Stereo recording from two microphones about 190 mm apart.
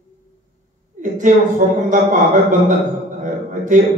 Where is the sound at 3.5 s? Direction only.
40° right (ahead or behind).